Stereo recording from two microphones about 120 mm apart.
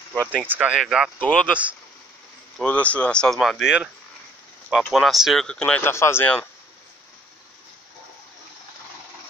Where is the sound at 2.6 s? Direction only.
10° left (ahead or behind); by 3.9 s 5° right (ahead or behind).